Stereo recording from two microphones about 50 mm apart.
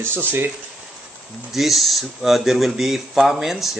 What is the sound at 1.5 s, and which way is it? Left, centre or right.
Speech, centre.